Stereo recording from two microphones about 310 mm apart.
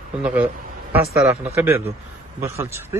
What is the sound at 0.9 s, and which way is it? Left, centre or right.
Speech, centre.